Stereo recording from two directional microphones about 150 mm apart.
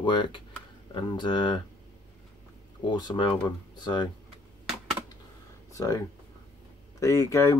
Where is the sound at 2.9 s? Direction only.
30° left (ahead or behind).